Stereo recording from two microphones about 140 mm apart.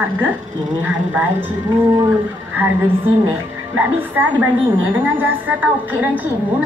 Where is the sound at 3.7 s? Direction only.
10° right (ahead or behind).